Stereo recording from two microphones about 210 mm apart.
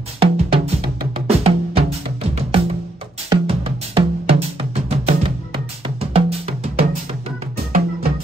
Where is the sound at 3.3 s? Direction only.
25° right (ahead or behind).